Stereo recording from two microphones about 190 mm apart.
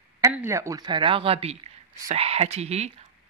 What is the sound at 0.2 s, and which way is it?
A woman's voice, 10° right (ahead or behind).